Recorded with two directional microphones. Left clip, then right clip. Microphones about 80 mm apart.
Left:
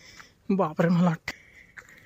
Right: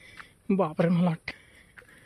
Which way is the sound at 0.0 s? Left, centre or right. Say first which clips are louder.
Right 1 dB; centre.